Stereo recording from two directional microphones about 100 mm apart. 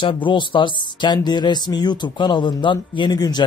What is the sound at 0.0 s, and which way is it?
Speech, 55° left (ahead or behind).